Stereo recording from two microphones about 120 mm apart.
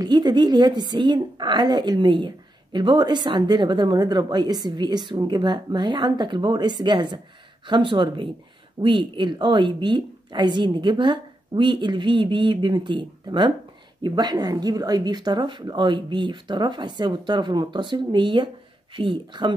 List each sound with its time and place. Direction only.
0.0 s a woman's voice: 35° right (ahead or behind)